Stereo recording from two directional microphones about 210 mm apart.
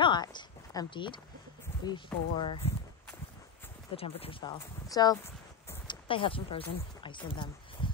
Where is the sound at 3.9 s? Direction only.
30° left (ahead or behind).